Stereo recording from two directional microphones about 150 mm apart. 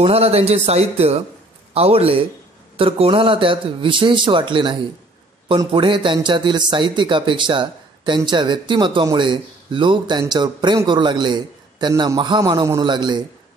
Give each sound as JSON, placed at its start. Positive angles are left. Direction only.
{"t": 0.0, "sound": "speech", "side_deg": -40}